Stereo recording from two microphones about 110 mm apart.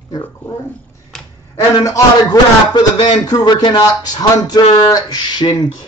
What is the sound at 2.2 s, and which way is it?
Speech, 40° left (ahead or behind).